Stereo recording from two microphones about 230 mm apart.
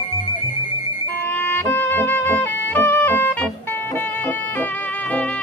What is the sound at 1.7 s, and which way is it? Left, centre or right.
Music, centre.